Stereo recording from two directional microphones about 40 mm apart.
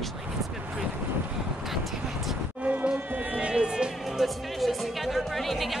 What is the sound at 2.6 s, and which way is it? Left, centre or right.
Music, right.